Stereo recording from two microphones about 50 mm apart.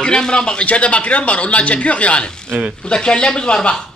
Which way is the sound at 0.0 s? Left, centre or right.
Centre.